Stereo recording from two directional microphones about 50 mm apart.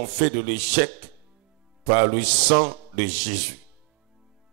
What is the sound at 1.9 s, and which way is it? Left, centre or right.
Speech, right.